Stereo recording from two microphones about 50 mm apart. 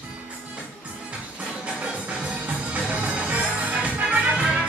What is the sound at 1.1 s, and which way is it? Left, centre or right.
Music, right.